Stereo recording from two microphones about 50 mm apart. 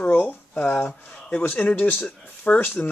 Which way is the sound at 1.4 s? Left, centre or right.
Left.